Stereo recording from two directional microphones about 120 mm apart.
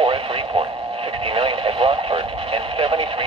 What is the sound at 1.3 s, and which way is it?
Radio, 50° right (ahead or behind).